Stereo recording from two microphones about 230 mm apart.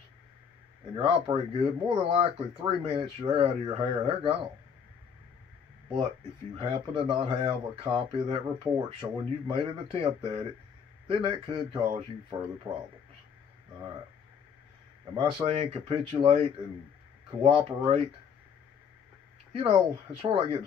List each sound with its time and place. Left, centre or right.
0.9 s speech: right
6.5 s speech: right
15.1 s speech: right
19.5 s speech: right